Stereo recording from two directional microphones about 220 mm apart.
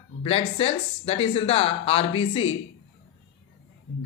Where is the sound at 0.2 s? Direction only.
25° left (ahead or behind).